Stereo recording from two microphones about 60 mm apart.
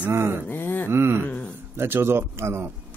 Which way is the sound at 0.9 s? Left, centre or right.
Right.